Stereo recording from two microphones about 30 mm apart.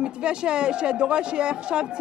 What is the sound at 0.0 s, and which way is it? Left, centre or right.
Speech, right.